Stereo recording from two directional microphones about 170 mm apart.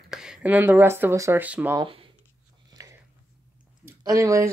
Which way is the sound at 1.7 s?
30° right (ahead or behind).